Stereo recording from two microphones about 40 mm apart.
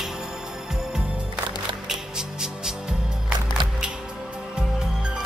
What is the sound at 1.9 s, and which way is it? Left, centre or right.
Music, centre.